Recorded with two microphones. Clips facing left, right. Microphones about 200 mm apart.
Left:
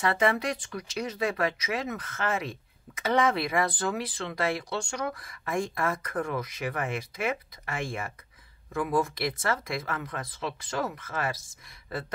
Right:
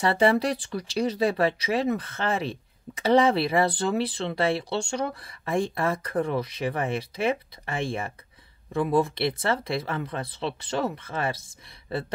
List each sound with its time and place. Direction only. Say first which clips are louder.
0.0 s speech: right 5 dB; 30° right (ahead or behind)